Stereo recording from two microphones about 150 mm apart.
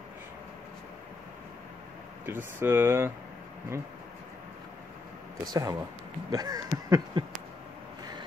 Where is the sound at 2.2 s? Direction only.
15° right (ahead or behind).